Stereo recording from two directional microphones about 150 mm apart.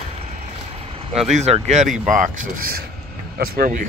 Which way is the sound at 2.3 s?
70° right (ahead or behind).